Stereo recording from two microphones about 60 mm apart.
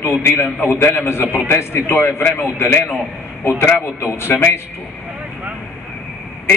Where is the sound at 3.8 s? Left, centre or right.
Left.